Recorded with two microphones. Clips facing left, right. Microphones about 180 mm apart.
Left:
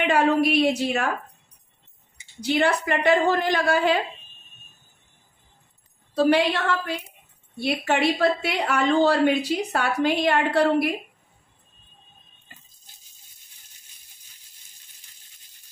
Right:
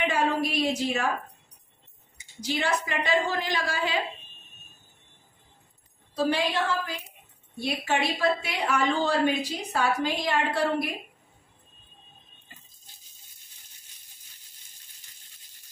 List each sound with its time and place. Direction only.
0.0 s a woman's voice: 70° left (ahead or behind)
2.4 s a woman's voice: 60° left (ahead or behind)
6.1 s a woman's voice: 65° left (ahead or behind)